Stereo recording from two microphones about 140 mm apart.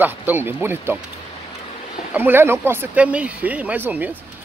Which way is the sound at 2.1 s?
15° right (ahead or behind).